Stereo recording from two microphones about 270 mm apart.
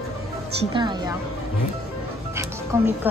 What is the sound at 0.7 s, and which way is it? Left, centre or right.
Speech, centre.